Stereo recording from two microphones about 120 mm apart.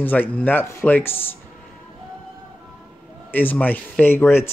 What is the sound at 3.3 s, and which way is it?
Speech, 15° left (ahead or behind).